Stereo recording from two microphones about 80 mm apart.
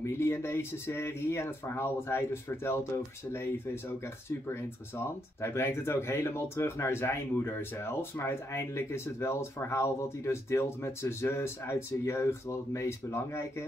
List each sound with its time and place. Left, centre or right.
0.0 s speech: left